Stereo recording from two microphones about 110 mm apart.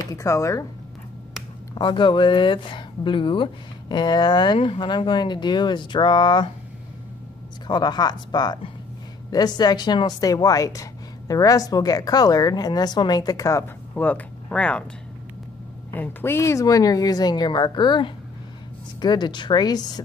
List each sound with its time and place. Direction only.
0.1 s speech: 25° left (ahead or behind)
1.8 s speech: 45° left (ahead or behind)
7.6 s a woman's voice: 40° left (ahead or behind)
13.9 s speech: 15° left (ahead or behind)
15.9 s a woman's voice: 15° left (ahead or behind); by 20.0 s 40° left (ahead or behind)